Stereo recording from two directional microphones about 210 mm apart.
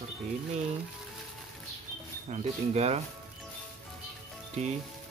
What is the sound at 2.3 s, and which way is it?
Speech, 35° right (ahead or behind).